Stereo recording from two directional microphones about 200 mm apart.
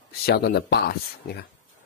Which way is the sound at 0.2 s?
50° left (ahead or behind).